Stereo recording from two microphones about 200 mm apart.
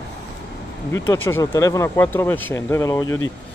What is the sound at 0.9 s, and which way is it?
Speech, 10° left (ahead or behind).